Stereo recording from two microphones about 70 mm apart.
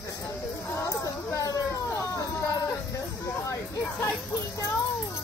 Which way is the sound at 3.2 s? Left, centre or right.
Left.